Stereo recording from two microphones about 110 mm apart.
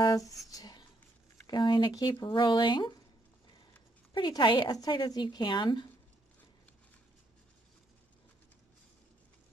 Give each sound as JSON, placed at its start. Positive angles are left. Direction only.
{"t": 0.0, "sound": "speech", "side_deg": 35}
{"t": 0.5, "sound": "a sound", "side_deg": 35}
{"t": 1.5, "sound": "a woman's voice", "side_deg": 45}
{"t": 4.1, "sound": "a woman's voice", "side_deg": 45}